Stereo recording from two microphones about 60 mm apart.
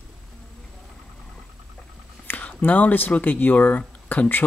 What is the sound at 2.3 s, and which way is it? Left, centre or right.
Speech, left.